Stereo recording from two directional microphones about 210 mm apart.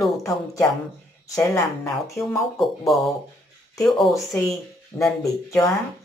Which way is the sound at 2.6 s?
Centre (ahead or behind).